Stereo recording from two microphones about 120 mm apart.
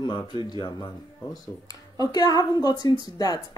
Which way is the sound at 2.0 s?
35° left (ahead or behind).